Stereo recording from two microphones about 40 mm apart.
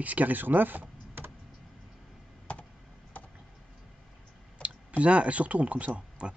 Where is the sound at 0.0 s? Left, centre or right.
Right.